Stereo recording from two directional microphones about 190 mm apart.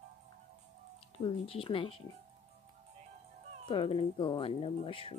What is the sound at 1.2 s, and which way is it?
Speech, 30° left (ahead or behind).